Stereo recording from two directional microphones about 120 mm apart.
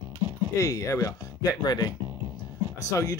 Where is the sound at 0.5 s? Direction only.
25° left (ahead or behind).